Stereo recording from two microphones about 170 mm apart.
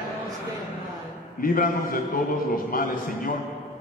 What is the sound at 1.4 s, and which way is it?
A man's voice, 55° left (ahead or behind).